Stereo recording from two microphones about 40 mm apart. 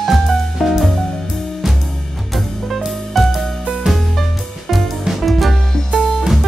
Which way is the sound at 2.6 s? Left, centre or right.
Centre.